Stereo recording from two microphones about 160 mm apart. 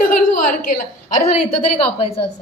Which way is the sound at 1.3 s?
40° left (ahead or behind).